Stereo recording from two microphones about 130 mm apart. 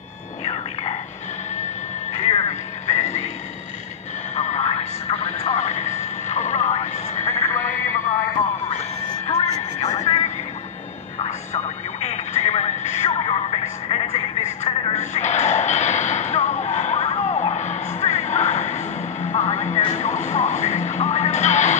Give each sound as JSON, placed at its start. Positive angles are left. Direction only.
{"t": 2.1, "sound": "music", "side_deg": 55}
{"t": 4.4, "sound": "radio", "side_deg": 60}
{"t": 7.2, "sound": "a sound", "side_deg": 20}
{"t": 9.8, "sound": "a sound", "side_deg": 55}
{"t": 11.2, "sound": "radio", "side_deg": 60}
{"t": 19.2, "sound": "vehicle", "side_deg": 60}
{"t": 19.9, "sound": "music", "side_deg": 60}